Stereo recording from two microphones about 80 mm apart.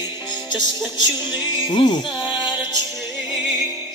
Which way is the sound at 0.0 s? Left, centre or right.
Left.